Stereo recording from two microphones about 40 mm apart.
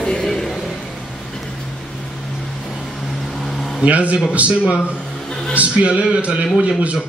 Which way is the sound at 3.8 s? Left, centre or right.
Right.